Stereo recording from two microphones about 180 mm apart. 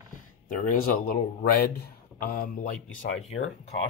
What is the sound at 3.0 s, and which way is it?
Speech, 35° left (ahead or behind).